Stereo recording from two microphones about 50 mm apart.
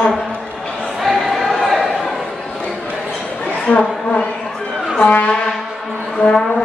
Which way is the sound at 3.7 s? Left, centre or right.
Left.